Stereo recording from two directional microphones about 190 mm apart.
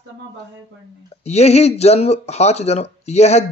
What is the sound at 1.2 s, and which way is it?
Speech, 35° left (ahead or behind).